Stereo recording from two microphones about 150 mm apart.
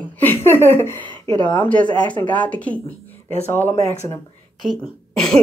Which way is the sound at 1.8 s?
30° left (ahead or behind).